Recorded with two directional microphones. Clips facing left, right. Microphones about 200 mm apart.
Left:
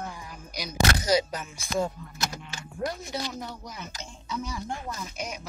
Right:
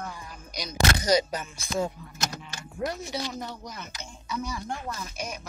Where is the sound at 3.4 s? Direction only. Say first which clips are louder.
Right 1 dB; 5° left (ahead or behind).